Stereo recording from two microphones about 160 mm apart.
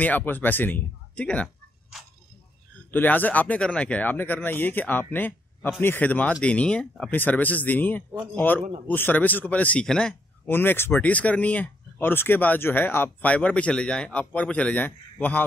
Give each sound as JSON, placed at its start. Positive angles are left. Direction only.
{"t": 0.0, "sound": "speech", "side_deg": 10}
{"t": 2.9, "sound": "speech", "side_deg": 10}